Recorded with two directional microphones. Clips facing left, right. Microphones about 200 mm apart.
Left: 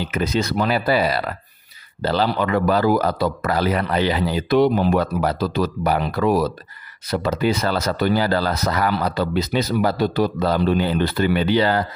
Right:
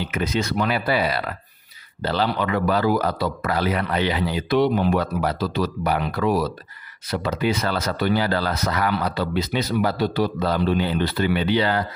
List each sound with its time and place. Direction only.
0.0 s speech: 35° left (ahead or behind)